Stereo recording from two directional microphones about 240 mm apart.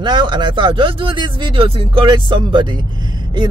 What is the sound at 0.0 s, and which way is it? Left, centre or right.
A woman's voice, centre.